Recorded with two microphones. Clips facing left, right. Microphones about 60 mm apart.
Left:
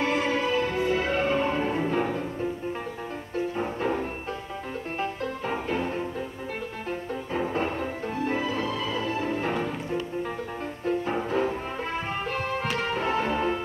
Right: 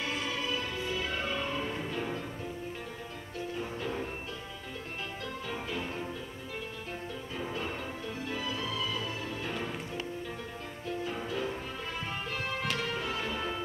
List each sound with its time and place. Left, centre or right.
0.0 s music: left
3.3 s music: left
5.5 s music: left
7.3 s music: left
10.9 s music: left
12.8 s music: left